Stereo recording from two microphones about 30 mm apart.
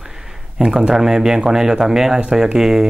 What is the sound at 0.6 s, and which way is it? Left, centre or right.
Speech, centre.